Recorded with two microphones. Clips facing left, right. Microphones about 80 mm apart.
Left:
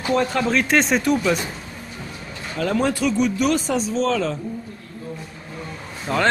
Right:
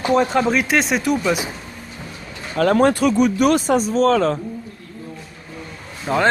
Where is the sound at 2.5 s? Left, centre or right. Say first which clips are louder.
Right 6 dB; right.